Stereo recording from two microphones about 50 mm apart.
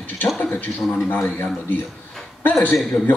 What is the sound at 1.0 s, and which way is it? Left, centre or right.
Speech, left.